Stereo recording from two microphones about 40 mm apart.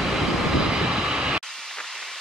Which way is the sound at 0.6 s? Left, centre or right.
Centre.